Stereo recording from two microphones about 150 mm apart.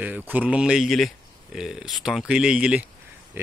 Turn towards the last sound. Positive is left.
turn(degrees=-15)  # may be behind; listen again after turning